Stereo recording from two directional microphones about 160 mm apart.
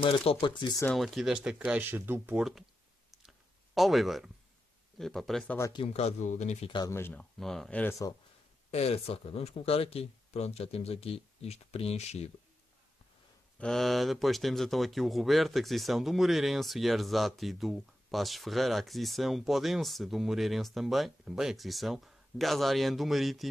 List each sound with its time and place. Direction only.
0.0 s speech: 35° left (ahead or behind)
0.9 s speech: centre (ahead or behind)
3.1 s clicking: centre (ahead or behind)
4.9 s speech: centre (ahead or behind)
5.6 s speech: 25° left (ahead or behind)
5.9 s speech: 45° left (ahead or behind)
6.7 s speech: 20° left (ahead or behind); by 7.9 s 5° left (ahead or behind)
8.7 s speech: 40° left (ahead or behind)
13.6 s speech: centre (ahead or behind)